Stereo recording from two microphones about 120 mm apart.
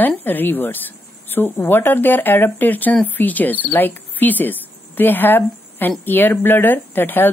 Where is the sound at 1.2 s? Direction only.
15° left (ahead or behind).